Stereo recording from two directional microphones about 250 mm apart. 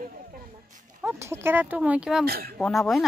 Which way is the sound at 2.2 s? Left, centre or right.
Right.